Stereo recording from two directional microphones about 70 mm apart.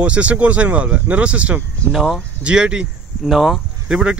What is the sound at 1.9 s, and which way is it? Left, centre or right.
Speech, centre.